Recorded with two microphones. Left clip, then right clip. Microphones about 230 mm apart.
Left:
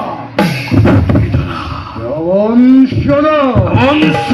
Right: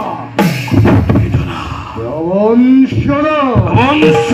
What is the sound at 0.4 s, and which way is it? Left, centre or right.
Beatboxing, left.